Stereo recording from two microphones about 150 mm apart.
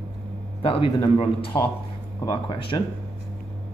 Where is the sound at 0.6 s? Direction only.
35° left (ahead or behind).